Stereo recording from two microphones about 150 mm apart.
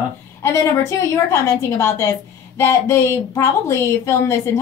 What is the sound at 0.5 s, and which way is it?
A woman's voice, 20° left (ahead or behind).